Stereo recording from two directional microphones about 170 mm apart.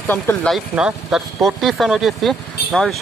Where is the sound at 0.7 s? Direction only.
5° right (ahead or behind).